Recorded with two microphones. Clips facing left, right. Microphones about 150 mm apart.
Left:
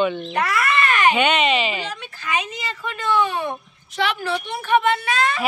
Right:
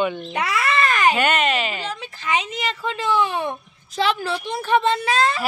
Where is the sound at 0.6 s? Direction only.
35° right (ahead or behind).